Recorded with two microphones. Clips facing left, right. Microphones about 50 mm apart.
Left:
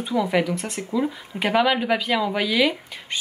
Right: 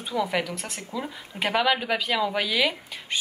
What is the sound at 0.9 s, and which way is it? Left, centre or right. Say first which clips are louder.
Speech: left 10 dB; centre.